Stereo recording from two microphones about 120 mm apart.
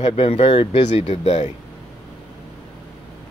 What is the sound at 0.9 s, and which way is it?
Speech, 65° left (ahead or behind).